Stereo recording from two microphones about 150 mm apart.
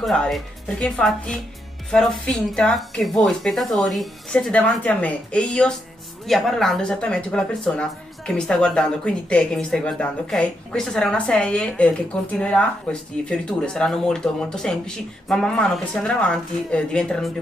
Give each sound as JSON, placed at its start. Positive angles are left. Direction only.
{"t": 0.0, "sound": "speech", "side_deg": 0}